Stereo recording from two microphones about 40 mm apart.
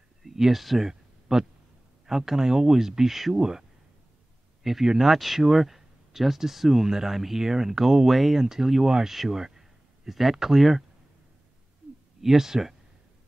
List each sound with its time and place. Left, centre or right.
0.2 s a sound: centre
2.0 s speech: centre
4.8 s speech: centre
9.4 s a sound: centre
10.3 s speech: centre
12.2 s speech: centre